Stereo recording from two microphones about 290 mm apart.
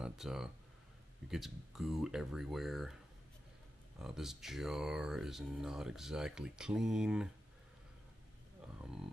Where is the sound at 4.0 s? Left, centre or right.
Centre.